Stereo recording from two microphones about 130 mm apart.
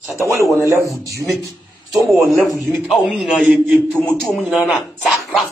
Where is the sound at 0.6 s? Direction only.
25° left (ahead or behind).